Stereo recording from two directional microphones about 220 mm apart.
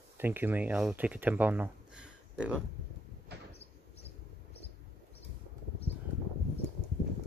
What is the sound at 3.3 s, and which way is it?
Sliding door, 50° right (ahead or behind).